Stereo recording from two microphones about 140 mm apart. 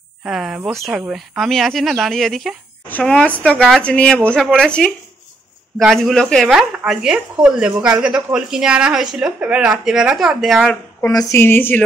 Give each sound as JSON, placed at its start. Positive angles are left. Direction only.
{"t": 0.2, "sound": "a woman's voice", "side_deg": 0}
{"t": 11.1, "sound": "a woman's voice", "side_deg": 20}